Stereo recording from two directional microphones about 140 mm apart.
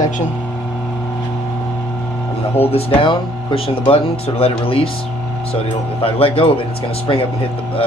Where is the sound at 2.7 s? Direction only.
40° left (ahead or behind).